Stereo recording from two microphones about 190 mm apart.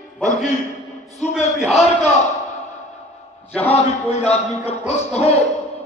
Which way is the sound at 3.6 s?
35° left (ahead or behind).